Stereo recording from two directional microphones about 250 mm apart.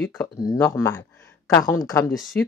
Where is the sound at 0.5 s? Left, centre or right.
Centre.